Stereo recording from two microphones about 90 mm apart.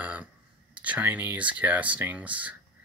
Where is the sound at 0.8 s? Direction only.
20° right (ahead or behind).